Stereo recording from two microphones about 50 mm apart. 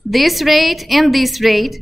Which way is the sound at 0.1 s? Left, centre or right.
Centre.